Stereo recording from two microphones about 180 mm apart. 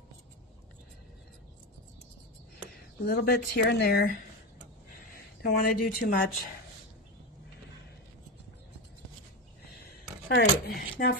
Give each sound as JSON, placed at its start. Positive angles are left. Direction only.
{"t": 3.1, "sound": "speech", "side_deg": 60}
{"t": 10.2, "sound": "speech", "side_deg": 65}